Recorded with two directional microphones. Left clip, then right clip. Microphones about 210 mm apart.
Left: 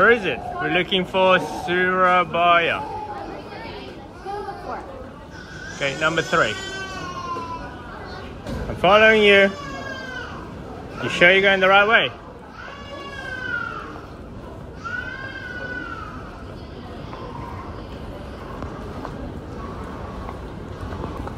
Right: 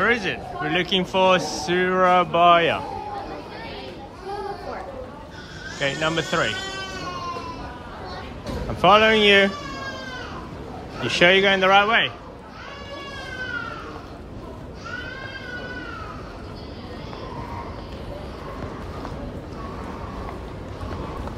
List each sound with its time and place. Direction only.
0.0 s speech: 10° right (ahead or behind)
1.4 s speech: 55° right (ahead or behind)
1.8 s speech: 15° right (ahead or behind)
5.8 s speech: 15° right (ahead or behind)
8.8 s speech: 10° right (ahead or behind)
11.0 s speech: 15° right (ahead or behind)